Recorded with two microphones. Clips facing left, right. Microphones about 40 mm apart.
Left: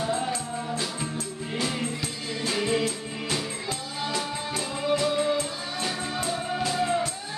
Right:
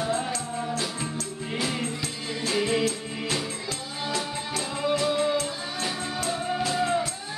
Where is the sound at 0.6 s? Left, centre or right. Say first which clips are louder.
Right 1 dB; centre.